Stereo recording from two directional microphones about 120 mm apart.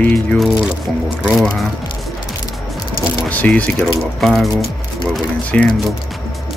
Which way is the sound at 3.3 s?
10° left (ahead or behind).